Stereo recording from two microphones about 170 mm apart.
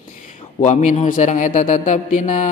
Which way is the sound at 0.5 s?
45° left (ahead or behind).